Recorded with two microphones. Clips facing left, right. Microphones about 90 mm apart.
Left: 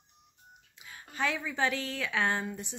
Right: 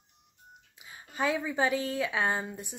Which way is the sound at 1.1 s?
15° right (ahead or behind).